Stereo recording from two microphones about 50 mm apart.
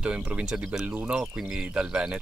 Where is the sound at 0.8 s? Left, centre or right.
Right.